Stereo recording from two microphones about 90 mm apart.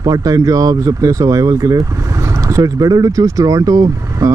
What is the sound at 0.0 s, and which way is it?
Speech, 40° right (ahead or behind).